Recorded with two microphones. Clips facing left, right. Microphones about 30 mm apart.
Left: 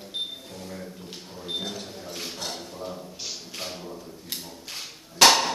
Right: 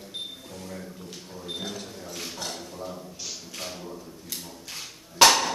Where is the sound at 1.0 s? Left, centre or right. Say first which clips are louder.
Left 1 dB; left.